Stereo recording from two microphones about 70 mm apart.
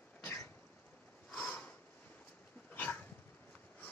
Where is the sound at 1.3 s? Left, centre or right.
Centre.